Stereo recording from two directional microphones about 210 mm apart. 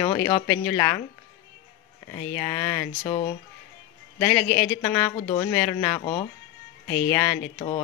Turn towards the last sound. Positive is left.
turn(degrees=20)  # may be behind; listen again after turning